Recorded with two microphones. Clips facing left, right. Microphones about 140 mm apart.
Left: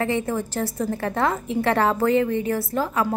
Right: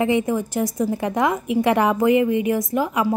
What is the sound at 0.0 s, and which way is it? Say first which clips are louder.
A woman's voice: right 4 dB; 15° right (ahead or behind).